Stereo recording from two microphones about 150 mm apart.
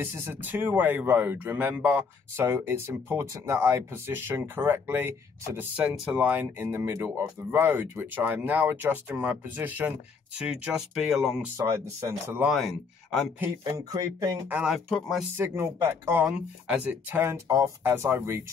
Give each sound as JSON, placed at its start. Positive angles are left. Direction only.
{"t": 0.0, "sound": "speech", "side_deg": -15}
{"t": 11.5, "sound": "speech", "side_deg": -15}
{"t": 12.4, "sound": "speech", "side_deg": 0}
{"t": 13.4, "sound": "speech", "side_deg": -20}
{"t": 14.5, "sound": "speech", "side_deg": -5}
{"t": 15.3, "sound": "speech", "side_deg": -15}